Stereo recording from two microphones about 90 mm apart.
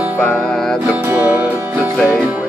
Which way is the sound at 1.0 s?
25° right (ahead or behind).